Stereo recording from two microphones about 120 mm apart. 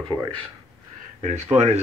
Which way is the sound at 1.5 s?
65° right (ahead or behind).